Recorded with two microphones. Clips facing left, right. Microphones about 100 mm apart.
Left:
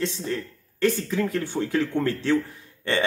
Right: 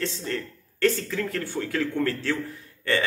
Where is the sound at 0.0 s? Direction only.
15° left (ahead or behind).